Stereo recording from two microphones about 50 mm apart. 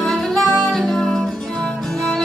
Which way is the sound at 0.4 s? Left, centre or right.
Centre.